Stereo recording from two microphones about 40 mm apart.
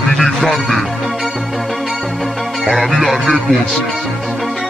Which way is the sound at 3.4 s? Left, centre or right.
Centre.